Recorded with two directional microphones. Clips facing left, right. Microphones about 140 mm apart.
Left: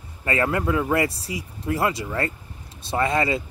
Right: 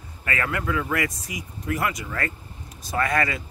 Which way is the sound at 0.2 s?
25° left (ahead or behind).